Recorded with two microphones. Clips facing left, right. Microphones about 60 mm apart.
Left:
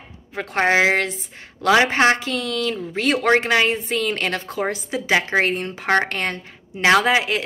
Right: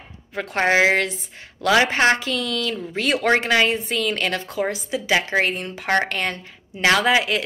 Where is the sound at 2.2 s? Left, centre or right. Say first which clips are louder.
Left 1 dB; left.